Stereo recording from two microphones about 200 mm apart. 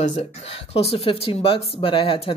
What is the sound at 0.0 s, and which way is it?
Speech, 35° left (ahead or behind).